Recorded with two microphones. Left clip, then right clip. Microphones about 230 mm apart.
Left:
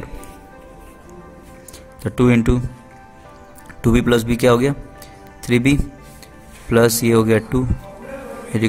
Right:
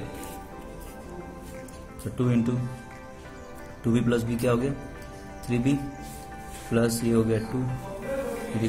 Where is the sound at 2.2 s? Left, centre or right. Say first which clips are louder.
Left 11 dB; left.